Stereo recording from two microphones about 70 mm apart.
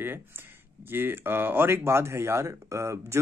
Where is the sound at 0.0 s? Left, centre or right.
Right.